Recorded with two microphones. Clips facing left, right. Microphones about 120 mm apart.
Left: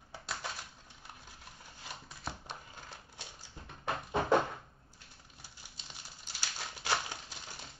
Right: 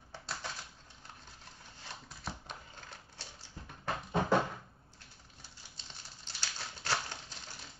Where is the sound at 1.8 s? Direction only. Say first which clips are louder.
Left 1 dB; 5° left (ahead or behind).